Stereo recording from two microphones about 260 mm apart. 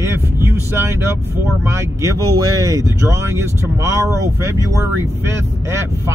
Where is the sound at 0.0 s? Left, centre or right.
Centre.